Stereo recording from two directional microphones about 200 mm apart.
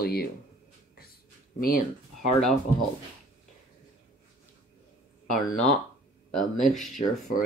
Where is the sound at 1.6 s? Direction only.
45° left (ahead or behind).